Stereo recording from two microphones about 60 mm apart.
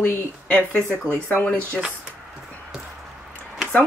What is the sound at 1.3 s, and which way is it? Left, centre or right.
Speech, left.